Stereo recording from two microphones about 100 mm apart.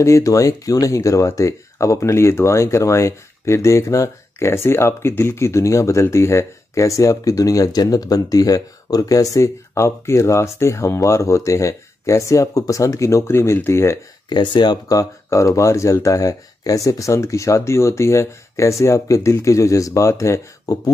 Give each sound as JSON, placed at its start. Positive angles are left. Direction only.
{"t": 0.0, "sound": "speech", "side_deg": 30}
{"t": 14.3, "sound": "speech", "side_deg": 50}